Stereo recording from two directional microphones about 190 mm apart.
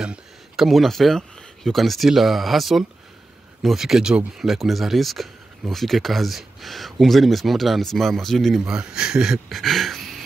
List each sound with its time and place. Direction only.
0.0 s speech: 5° right (ahead or behind)